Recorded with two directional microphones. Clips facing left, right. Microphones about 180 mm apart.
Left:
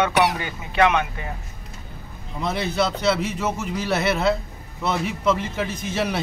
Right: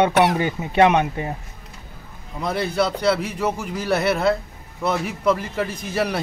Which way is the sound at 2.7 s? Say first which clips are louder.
Right 2 dB; 10° right (ahead or behind).